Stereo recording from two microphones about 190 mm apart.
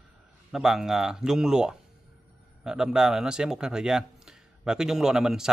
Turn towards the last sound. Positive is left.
turn(degrees=0)  # may be behind; listen again after turning